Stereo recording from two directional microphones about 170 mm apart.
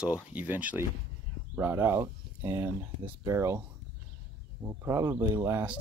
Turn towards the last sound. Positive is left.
turn(degrees=-20)  # may be behind; listen again after turning